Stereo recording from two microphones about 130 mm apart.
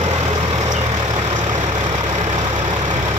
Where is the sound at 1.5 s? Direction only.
65° right (ahead or behind).